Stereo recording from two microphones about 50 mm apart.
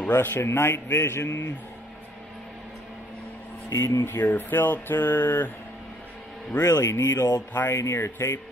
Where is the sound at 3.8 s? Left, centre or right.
Left.